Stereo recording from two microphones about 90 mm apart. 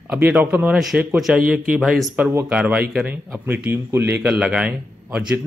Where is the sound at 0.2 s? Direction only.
15° right (ahead or behind).